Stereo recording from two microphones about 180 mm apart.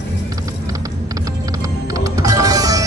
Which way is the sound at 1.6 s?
20° right (ahead or behind).